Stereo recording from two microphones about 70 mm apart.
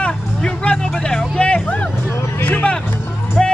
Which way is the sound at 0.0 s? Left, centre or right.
Centre.